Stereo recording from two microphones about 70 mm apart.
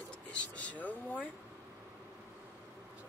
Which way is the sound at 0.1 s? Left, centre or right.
Centre.